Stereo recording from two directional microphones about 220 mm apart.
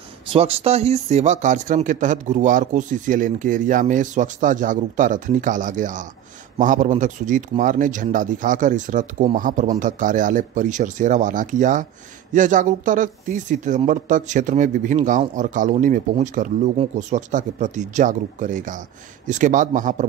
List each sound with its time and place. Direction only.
0.3 s speech: 25° right (ahead or behind)